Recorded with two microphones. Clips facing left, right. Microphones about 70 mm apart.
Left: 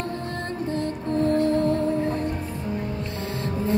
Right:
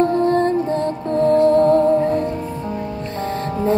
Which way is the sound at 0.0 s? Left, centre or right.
Right.